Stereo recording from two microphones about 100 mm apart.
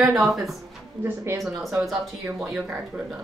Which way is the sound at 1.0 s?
25° right (ahead or behind).